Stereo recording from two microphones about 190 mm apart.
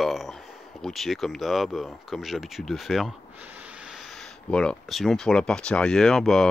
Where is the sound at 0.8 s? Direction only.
Centre (ahead or behind).